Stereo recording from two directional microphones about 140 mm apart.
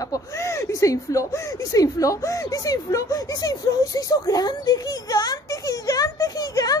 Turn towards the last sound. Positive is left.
turn(degrees=25)  # may be behind; listen again after turning